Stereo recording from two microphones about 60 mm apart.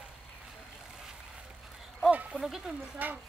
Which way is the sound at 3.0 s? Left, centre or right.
Right.